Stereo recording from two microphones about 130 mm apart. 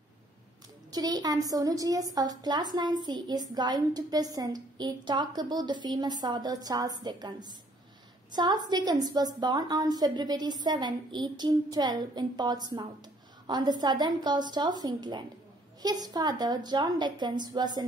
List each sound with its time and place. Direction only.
0.9 s a woman's voice: 30° right (ahead or behind)